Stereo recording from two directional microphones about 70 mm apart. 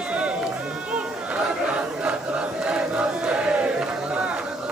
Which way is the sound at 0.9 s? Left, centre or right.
Centre.